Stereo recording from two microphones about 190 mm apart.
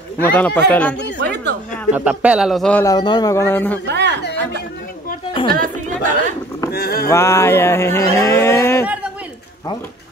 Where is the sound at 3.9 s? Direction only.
65° right (ahead or behind).